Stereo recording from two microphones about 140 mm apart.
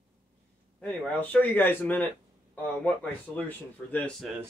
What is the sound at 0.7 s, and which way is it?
A man's voice, 10° left (ahead or behind).